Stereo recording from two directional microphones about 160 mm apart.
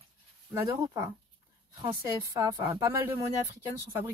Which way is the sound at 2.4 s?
20° right (ahead or behind).